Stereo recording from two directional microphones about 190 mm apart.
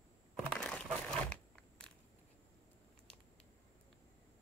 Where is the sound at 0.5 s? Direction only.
5° left (ahead or behind).